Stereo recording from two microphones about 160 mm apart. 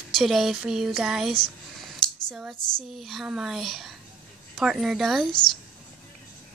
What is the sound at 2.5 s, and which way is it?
Speech, 25° left (ahead or behind).